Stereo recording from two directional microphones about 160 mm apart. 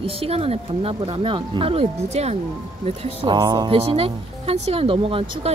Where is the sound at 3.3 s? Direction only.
25° right (ahead or behind).